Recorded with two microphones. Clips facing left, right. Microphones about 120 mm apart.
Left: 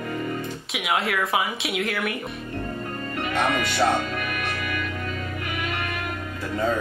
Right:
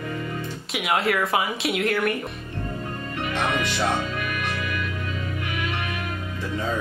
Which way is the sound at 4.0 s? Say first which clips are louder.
Even; 45° left (ahead or behind).